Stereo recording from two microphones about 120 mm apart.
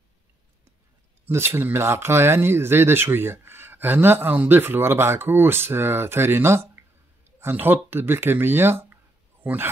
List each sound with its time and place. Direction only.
1.2 s speech: 20° right (ahead or behind)